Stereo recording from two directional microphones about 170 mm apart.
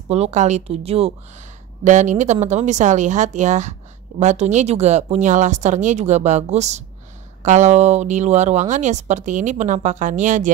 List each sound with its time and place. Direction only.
0.1 s speech: 40° right (ahead or behind)